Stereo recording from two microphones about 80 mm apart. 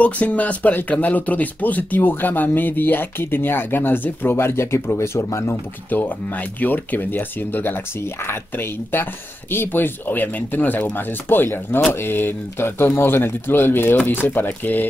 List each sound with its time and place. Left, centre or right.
0.0 s speech: centre; by 5.6 s left
5.9 s speech: left